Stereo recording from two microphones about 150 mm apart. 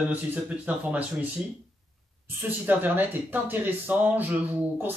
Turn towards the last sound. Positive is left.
turn(degrees=-15)  # may be behind; listen again after turning